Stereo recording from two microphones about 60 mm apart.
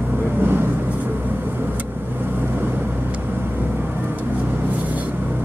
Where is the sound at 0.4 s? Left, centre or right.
Right.